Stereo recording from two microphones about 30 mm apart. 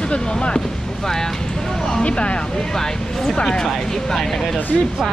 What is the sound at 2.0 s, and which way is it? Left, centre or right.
Speech, left.